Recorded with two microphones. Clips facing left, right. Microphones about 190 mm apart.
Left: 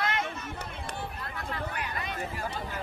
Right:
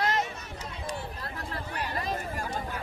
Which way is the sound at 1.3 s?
35° right (ahead or behind).